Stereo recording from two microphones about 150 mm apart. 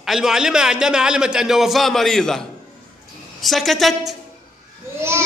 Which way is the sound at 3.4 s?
Centre (ahead or behind).